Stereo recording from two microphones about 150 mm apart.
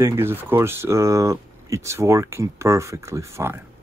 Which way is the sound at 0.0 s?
15° right (ahead or behind).